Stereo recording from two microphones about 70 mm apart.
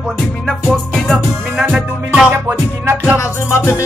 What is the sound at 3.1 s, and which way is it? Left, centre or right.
Music, left.